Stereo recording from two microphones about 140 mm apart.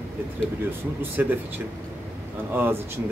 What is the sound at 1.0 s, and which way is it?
Speech, 15° right (ahead or behind).